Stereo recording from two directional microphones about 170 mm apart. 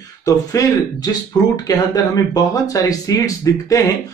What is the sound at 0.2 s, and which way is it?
A man's voice, 20° left (ahead or behind).